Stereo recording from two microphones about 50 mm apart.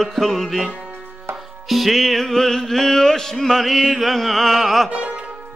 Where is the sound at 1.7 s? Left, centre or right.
Centre.